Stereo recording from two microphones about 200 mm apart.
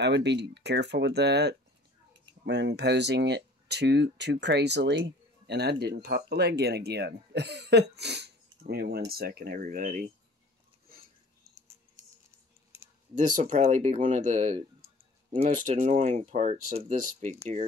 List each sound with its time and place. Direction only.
0.0 s speech: 60° right (ahead or behind); by 10.0 s 40° right (ahead or behind)
13.1 s speech: 40° right (ahead or behind)